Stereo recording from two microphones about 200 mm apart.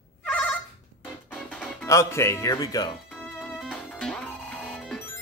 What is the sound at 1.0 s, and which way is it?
Music, 5° left (ahead or behind).